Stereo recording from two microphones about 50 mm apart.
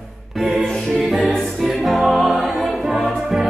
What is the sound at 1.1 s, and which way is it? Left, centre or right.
Music, centre.